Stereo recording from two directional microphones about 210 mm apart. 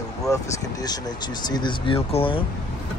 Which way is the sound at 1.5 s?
20° left (ahead or behind).